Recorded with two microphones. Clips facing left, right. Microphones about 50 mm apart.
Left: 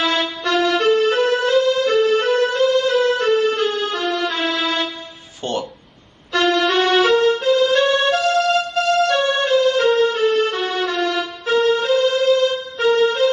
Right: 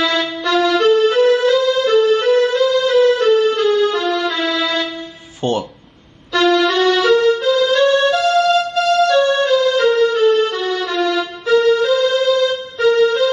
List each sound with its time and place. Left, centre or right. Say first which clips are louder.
0.0 s music: right 2 dB; left
5.4 s music: right 5 dB; centre
6.3 s music: right 3 dB; left